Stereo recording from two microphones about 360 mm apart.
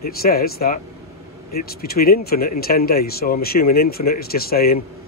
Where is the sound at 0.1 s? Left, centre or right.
Left.